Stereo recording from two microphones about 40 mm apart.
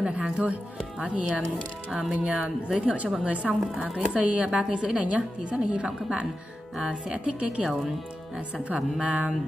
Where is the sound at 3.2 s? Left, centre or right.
Right.